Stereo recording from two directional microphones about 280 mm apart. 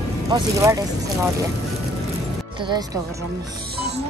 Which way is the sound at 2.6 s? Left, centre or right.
Centre.